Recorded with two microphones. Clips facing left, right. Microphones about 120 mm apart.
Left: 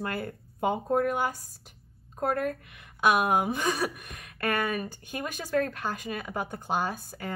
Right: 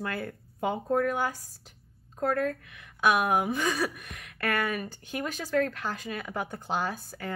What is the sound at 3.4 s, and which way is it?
Speech, 20° left (ahead or behind).